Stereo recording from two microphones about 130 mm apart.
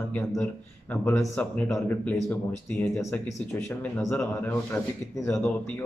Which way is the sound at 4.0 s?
20° left (ahead or behind).